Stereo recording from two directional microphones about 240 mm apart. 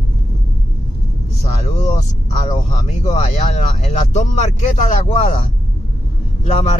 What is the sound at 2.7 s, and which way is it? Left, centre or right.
Speech, left.